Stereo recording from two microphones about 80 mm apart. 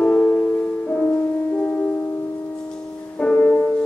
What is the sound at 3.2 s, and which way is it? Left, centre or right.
Music, centre.